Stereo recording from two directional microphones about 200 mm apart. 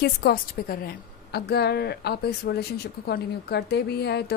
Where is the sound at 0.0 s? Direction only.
50° left (ahead or behind).